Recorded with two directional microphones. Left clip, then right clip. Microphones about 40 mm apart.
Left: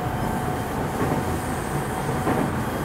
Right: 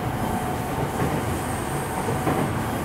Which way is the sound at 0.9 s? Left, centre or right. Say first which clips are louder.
Left 1 dB; centre.